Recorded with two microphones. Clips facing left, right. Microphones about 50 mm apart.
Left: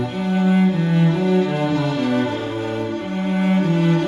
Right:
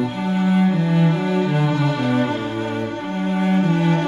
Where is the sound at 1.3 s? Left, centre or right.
Centre.